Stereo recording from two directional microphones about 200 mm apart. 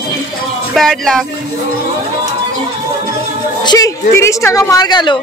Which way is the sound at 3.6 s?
20° left (ahead or behind).